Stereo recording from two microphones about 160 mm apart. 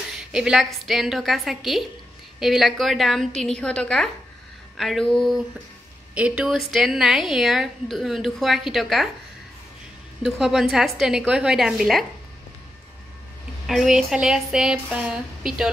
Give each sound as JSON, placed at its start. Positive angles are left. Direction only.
{"t": 0.3, "sound": "speech", "side_deg": -5}
{"t": 10.2, "sound": "speech", "side_deg": 0}
{"t": 13.7, "sound": "speech", "side_deg": 0}